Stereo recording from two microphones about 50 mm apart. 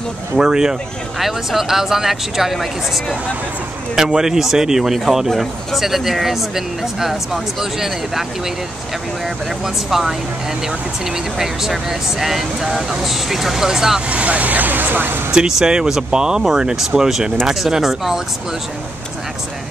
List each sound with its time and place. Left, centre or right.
0.4 s speech: centre
3.9 s speech: centre
9.8 s speech: centre
14.0 s speech: right
15.3 s speech: centre